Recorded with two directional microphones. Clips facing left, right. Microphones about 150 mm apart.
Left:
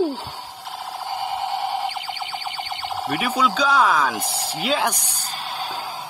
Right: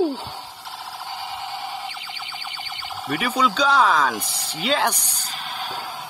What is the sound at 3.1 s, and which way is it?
Speech, 5° left (ahead or behind).